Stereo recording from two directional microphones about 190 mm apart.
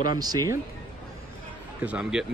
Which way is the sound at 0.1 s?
20° right (ahead or behind).